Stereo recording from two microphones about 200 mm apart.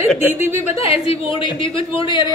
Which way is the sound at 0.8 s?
25° left (ahead or behind).